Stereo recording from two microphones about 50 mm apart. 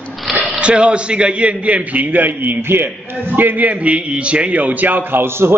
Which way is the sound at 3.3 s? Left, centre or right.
Right.